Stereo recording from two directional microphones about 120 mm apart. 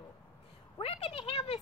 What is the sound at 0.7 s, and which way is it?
Speech, 55° left (ahead or behind).